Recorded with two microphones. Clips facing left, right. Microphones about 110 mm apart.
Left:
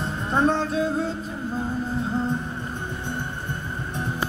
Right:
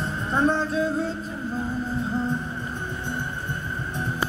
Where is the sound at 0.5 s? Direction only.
70° left (ahead or behind).